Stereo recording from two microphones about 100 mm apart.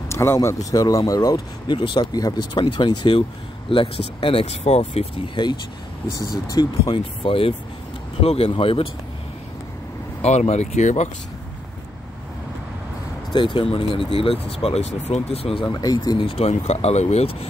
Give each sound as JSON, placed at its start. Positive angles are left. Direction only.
{"t": 0.1, "sound": "speech", "side_deg": 25}
{"t": 3.7, "sound": "speech", "side_deg": 70}
{"t": 5.3, "sound": "speech", "side_deg": 45}
{"t": 7.2, "sound": "speech", "side_deg": 65}
{"t": 8.2, "sound": "speech", "side_deg": 85}
{"t": 10.2, "sound": "speech", "side_deg": 90}
{"t": 13.3, "sound": "speech", "side_deg": 50}
{"t": 15.6, "sound": "speech", "side_deg": 45}
{"t": 16.2, "sound": "speech", "side_deg": 70}